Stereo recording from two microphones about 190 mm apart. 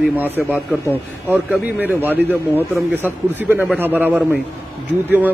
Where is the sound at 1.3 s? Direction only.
10° right (ahead or behind).